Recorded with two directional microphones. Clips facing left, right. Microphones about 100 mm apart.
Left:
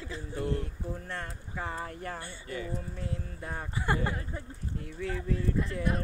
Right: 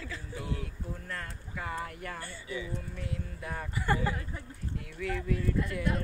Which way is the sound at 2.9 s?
30° left (ahead or behind).